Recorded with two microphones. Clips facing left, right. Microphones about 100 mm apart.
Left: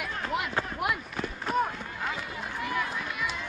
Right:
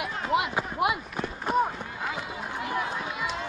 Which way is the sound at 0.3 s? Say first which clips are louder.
Right 6 dB; 90° right.